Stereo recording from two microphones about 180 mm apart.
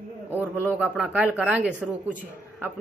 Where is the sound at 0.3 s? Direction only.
10° right (ahead or behind).